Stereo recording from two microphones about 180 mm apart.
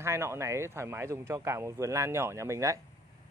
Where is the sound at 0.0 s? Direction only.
15° right (ahead or behind).